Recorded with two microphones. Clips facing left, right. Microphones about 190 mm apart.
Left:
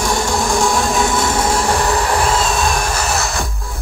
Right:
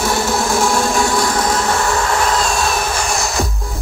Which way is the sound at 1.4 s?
10° left (ahead or behind).